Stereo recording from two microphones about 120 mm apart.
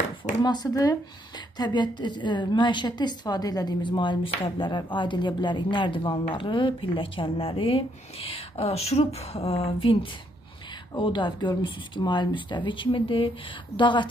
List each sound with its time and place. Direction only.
0.4 s a woman's voice: 35° left (ahead or behind); by 9.9 s 55° left (ahead or behind)
11.0 s speech: 40° left (ahead or behind)